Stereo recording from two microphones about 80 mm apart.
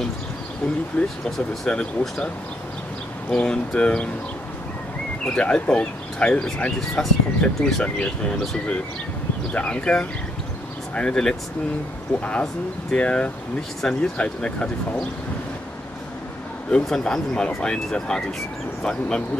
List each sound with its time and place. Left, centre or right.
1.6 s speech: centre
5.2 s speech: centre
16.7 s speech: centre